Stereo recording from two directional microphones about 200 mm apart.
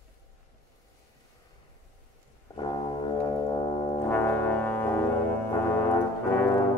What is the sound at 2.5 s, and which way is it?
Music, 20° left (ahead or behind).